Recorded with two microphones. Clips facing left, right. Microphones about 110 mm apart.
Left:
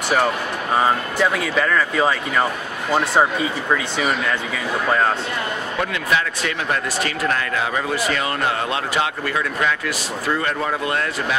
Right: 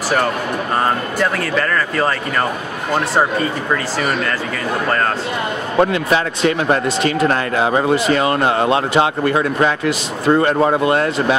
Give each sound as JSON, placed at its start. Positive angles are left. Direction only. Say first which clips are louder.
{"t": 0.7, "sound": "speech", "louder": "even", "side_deg": 5}
{"t": 5.8, "sound": "speech", "louder": "right 8 dB", "side_deg": -35}